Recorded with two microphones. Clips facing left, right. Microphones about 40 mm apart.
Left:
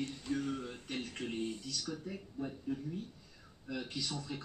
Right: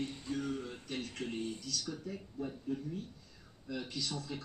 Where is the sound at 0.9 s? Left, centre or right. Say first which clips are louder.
Even; left.